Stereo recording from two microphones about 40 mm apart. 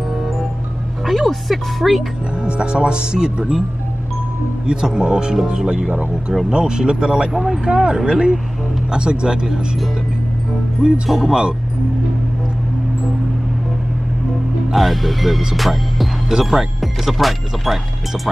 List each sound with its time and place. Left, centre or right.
1.0 s speech: centre
2.4 s speech: right
4.6 s speech: centre
7.3 s speech: centre
7.6 s speech: right
11.1 s speech: centre
14.7 s speech: centre